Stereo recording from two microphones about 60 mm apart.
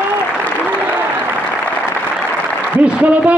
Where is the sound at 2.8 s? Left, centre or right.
Right.